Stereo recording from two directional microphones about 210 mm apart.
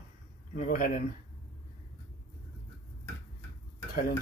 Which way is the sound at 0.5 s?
40° left (ahead or behind).